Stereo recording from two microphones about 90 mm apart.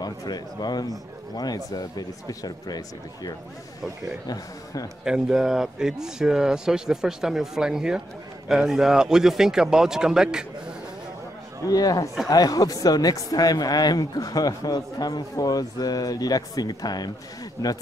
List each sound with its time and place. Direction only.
0.0 s speech: 50° left (ahead or behind)
5.0 s speech: 5° right (ahead or behind)
11.6 s speech: 40° left (ahead or behind)